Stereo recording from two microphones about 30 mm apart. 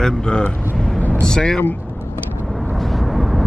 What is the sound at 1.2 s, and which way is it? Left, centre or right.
Speech, left.